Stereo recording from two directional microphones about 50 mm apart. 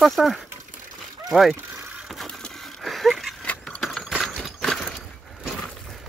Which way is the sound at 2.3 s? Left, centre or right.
Centre.